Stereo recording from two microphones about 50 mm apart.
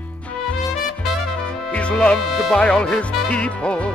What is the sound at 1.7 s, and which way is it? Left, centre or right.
Music, left.